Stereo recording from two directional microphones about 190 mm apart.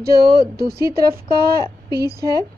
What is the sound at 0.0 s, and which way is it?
Speech, 55° right (ahead or behind).